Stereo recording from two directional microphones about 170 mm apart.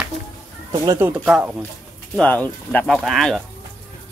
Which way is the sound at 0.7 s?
20° right (ahead or behind).